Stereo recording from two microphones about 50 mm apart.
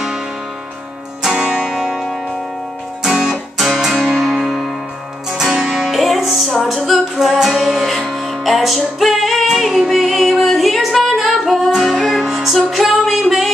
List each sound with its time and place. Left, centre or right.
1.2 s music: centre